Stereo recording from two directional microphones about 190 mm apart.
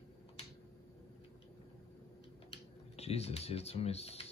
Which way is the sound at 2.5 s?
35° left (ahead or behind).